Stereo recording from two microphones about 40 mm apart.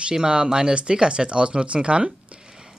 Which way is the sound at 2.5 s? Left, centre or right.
Centre.